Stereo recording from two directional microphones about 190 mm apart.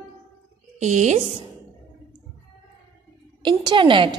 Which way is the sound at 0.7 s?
40° right (ahead or behind).